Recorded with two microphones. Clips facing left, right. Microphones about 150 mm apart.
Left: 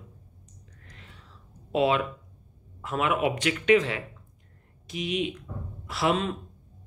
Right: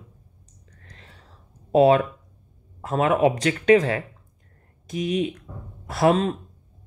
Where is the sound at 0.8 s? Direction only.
35° right (ahead or behind).